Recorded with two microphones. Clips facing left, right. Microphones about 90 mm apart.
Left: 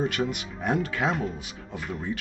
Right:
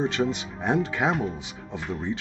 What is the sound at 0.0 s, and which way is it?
Speech, 25° right (ahead or behind).